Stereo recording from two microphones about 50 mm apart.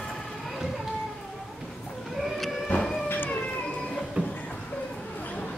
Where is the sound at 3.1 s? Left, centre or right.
Left.